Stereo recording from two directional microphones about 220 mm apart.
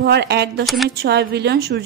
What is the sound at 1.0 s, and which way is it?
Speech, 50° right (ahead or behind).